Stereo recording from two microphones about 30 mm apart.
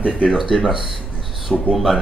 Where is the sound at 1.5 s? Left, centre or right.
Centre.